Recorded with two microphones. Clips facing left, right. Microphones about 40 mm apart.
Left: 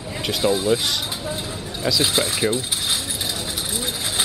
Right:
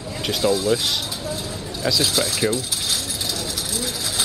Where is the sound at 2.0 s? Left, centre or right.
Left.